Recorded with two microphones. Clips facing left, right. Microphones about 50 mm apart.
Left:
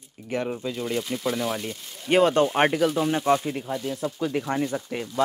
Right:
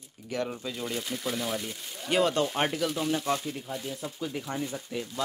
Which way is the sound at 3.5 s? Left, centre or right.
Left.